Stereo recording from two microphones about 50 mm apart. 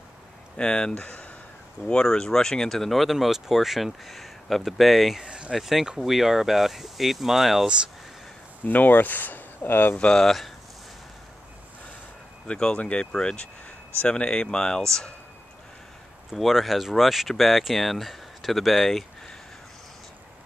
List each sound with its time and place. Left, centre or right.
0.6 s speech: centre
0.9 s speech: left
1.9 s speech: centre
5.2 s speech: centre
5.5 s speech: centre
7.6 s speech: centre
8.6 s speech: left
10.1 s speech: centre
12.4 s speech: centre
16.3 s speech: centre